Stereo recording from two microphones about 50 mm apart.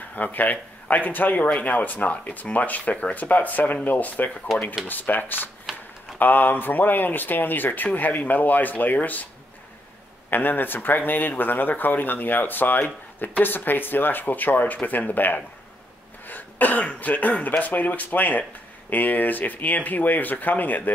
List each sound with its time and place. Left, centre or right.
0.1 s speech: left
10.3 s speech: left